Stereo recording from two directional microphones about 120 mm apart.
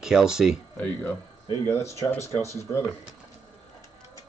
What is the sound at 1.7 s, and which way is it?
Speech, 25° left (ahead or behind).